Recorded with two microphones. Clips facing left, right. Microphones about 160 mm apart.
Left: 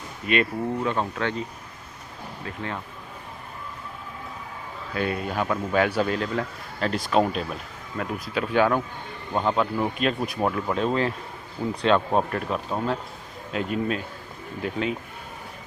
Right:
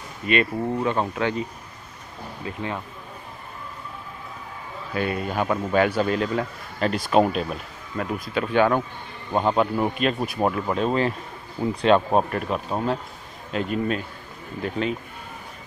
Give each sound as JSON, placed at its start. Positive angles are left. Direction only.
{"t": 0.3, "sound": "speech", "side_deg": 0}
{"t": 0.9, "sound": "speech", "side_deg": -10}
{"t": 2.4, "sound": "speech", "side_deg": -15}
{"t": 4.9, "sound": "speech", "side_deg": 0}
{"t": 9.3, "sound": "speech", "side_deg": -15}
{"t": 11.8, "sound": "speech", "side_deg": -15}
{"t": 13.5, "sound": "speech", "side_deg": 0}